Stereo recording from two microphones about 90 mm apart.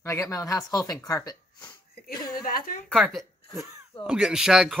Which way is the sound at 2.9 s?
Centre (ahead or behind).